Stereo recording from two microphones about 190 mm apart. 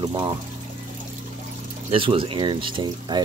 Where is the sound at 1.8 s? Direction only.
30° right (ahead or behind).